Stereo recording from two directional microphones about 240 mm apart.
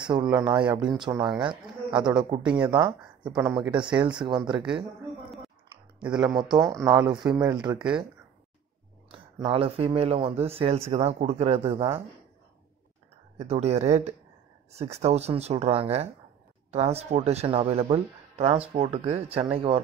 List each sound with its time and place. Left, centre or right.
0.0 s speech: centre
4.6 s speech: centre
6.0 s speech: centre
6.3 s speech: centre
9.1 s speech: right
13.4 s speech: right